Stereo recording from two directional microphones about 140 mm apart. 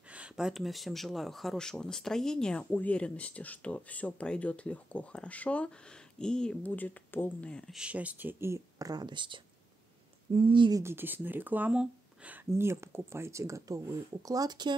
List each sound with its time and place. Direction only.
0.1 s speech: 5° right (ahead or behind)
7.7 s speech: 10° right (ahead or behind); by 10.8 s 35° right (ahead or behind)
10.8 s speech: 15° right (ahead or behind); by 14.8 s 30° right (ahead or behind)